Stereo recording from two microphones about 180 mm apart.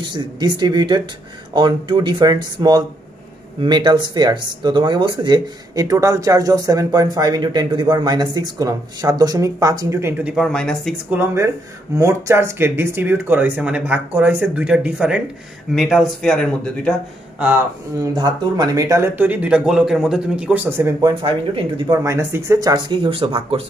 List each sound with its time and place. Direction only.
0.0 s speech: 25° right (ahead or behind)
10.3 s speech: centre (ahead or behind)
11.1 s speech: 15° right (ahead or behind); by 16.9 s 5° left (ahead or behind)
18.0 s speech: 25° right (ahead or behind)
21.1 s speech: 25° right (ahead or behind)